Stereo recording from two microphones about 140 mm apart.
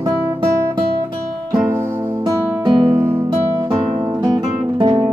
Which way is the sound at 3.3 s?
30° right (ahead or behind).